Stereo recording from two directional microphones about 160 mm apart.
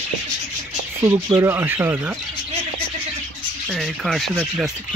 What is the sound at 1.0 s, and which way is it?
Speech, 15° right (ahead or behind).